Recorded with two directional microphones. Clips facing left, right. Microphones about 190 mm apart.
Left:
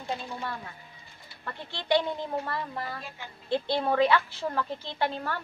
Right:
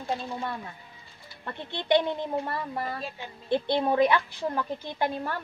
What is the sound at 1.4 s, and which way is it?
Speech, 20° right (ahead or behind).